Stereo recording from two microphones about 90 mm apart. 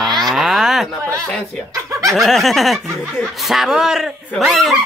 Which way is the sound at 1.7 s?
40° right (ahead or behind).